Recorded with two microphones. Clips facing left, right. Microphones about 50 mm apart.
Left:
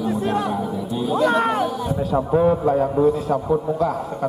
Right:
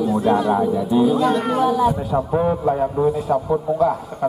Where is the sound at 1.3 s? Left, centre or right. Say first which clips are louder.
Left 1 dB; left.